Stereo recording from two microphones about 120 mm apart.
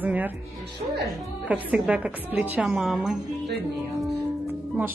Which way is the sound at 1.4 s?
10° right (ahead or behind).